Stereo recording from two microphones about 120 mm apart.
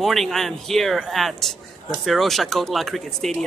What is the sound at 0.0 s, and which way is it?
A man's voice, centre (ahead or behind).